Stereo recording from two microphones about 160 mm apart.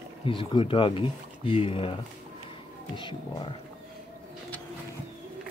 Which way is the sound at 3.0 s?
30° left (ahead or behind).